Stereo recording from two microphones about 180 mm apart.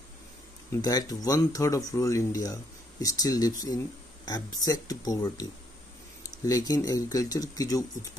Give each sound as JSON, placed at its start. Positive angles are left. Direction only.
{"t": 0.7, "sound": "speech", "side_deg": 20}